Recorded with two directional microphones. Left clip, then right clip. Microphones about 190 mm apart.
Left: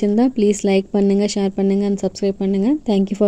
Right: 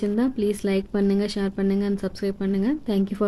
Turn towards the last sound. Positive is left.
turn(degrees=20)  # may be behind; listen again after turning